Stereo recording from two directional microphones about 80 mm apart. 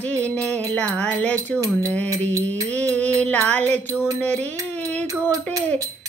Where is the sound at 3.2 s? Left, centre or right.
Centre.